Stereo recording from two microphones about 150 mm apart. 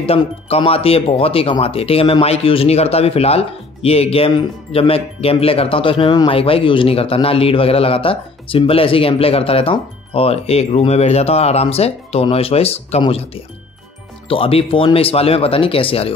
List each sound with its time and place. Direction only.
0.0 s speech: 40° left (ahead or behind)